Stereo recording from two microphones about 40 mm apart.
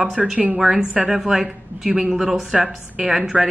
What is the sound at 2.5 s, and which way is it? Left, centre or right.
Speech, right.